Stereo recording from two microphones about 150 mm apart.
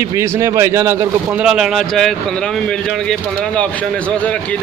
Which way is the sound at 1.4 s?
5° right (ahead or behind).